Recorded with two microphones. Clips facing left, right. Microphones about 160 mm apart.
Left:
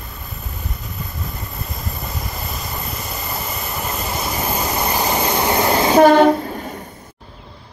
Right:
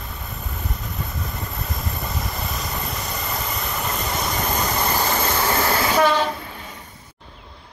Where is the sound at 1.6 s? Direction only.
Centre (ahead or behind); by 5.9 s 20° left (ahead or behind).